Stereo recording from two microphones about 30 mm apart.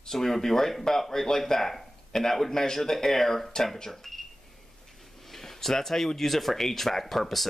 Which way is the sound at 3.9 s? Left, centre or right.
Centre.